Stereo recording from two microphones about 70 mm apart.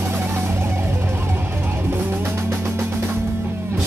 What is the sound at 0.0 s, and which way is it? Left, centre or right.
Music, right.